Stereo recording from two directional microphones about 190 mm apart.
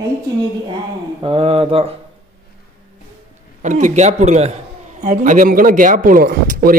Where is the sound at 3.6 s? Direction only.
40° right (ahead or behind).